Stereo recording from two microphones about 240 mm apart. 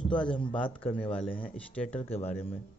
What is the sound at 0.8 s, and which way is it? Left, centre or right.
Speech, centre.